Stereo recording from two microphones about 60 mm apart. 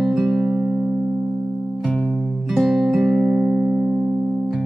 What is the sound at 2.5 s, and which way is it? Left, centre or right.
Music, centre.